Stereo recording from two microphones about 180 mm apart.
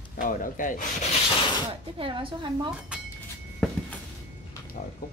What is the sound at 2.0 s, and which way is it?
Speech, 30° right (ahead or behind).